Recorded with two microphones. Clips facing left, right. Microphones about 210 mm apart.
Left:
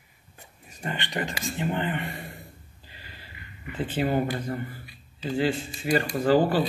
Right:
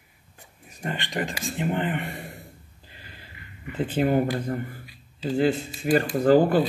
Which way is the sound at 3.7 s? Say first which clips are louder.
Right 3 dB; 45° right (ahead or behind).